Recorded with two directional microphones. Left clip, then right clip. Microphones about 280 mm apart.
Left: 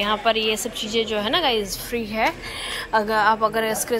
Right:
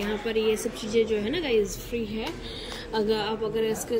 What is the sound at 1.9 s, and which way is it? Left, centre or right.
Speech, left.